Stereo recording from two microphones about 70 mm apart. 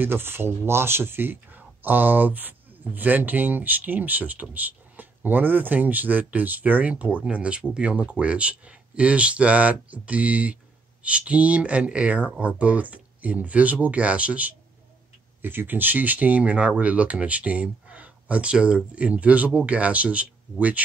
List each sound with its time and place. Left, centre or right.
0.0 s speech: right